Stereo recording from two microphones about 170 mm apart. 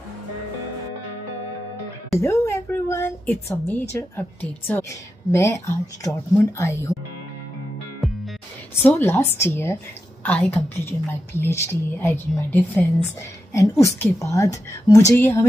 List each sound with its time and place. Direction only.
2.1 s a woman's voice: 15° left (ahead or behind)
8.0 s music: centre (ahead or behind)
9.0 s a woman's voice: 15° left (ahead or behind)